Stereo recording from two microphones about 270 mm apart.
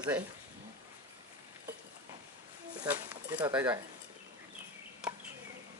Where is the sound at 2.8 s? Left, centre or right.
Centre.